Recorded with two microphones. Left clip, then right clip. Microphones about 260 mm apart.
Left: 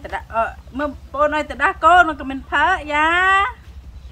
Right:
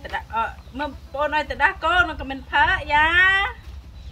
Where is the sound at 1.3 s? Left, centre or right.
Centre.